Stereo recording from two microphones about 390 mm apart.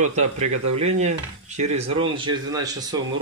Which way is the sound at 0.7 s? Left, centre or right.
Centre.